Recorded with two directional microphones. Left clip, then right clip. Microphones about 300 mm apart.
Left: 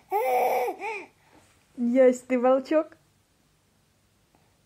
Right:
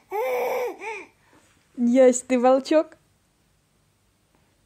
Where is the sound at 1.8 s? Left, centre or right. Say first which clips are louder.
Right 3 dB; centre.